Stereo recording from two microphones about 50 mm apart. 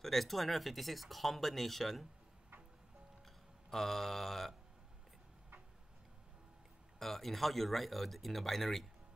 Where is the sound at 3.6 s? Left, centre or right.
Centre.